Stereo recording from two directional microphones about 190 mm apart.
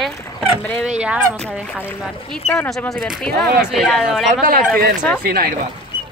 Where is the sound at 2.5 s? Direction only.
5° left (ahead or behind).